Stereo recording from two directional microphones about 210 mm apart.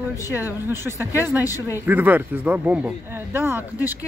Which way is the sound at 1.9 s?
10° right (ahead or behind).